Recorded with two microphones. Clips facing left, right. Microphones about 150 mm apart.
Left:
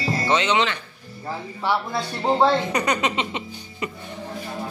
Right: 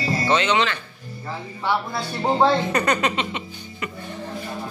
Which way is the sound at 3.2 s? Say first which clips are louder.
Even; 25° left (ahead or behind).